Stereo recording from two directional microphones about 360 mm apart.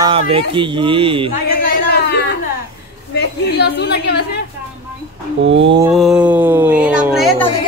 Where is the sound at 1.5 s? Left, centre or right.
Left.